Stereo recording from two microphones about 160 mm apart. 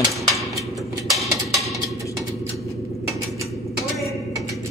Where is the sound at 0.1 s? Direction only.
Centre (ahead or behind).